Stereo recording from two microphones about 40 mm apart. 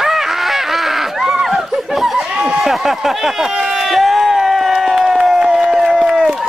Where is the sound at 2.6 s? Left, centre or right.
Centre.